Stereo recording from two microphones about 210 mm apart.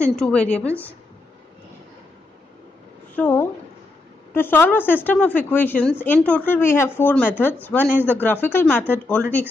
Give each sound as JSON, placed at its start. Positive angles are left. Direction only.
{"t": 0.0, "sound": "a woman's voice", "side_deg": 5}
{"t": 3.2, "sound": "a woman's voice", "side_deg": 10}